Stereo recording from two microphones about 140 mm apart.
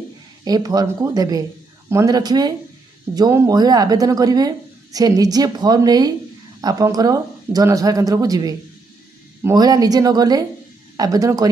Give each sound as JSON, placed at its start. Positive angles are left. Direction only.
{"t": 0.5, "sound": "speech", "side_deg": -25}